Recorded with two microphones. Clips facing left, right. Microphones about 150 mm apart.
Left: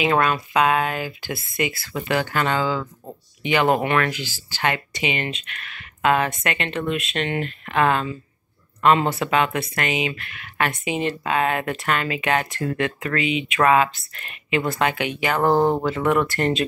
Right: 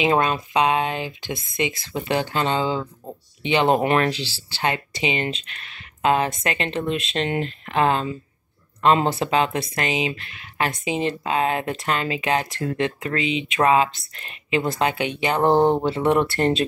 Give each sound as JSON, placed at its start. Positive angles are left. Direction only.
{"t": 0.0, "sound": "speech", "side_deg": -25}